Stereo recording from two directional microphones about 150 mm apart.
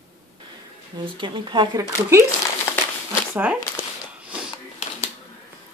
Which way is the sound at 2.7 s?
15° left (ahead or behind).